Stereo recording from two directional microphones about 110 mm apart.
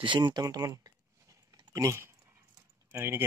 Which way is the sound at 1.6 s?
30° right (ahead or behind).